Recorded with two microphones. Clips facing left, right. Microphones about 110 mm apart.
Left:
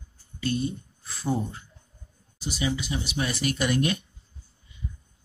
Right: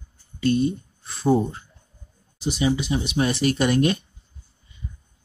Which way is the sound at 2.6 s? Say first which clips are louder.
Right 6 dB; 25° right (ahead or behind).